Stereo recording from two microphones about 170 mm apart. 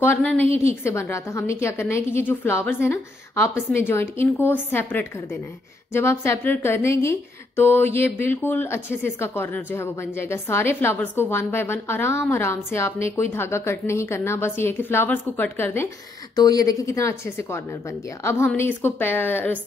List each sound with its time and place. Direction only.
0.0 s a woman's voice: 10° left (ahead or behind)